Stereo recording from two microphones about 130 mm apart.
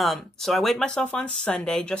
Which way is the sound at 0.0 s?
Centre (ahead or behind).